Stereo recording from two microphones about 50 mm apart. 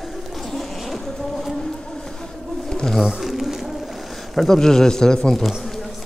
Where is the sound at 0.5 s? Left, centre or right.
Centre.